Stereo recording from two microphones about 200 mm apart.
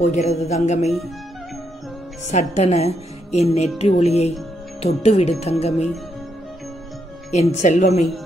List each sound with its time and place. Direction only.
0.0 s music: 35° left (ahead or behind)
2.2 s music: 35° left (ahead or behind)
7.2 s music: 35° left (ahead or behind)